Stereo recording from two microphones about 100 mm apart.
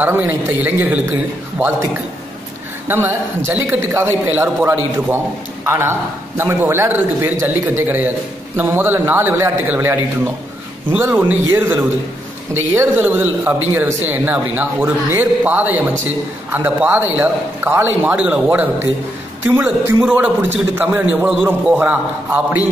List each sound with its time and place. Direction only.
0.0 s a man's voice: 20° right (ahead or behind)
2.9 s a man's voice: 20° right (ahead or behind)
20.0 s a man's voice: 10° right (ahead or behind)